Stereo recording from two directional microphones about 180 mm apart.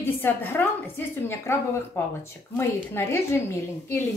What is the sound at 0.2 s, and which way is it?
A woman's voice, 10° left (ahead or behind).